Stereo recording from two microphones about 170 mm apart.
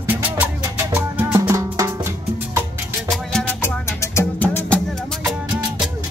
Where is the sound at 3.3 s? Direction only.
10° left (ahead or behind).